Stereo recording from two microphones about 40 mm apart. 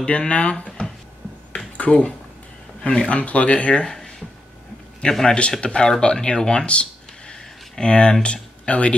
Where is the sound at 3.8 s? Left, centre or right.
Centre.